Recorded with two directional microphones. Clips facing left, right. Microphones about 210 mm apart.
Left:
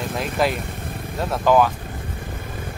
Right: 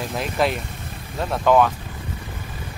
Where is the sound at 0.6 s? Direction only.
55° left (ahead or behind).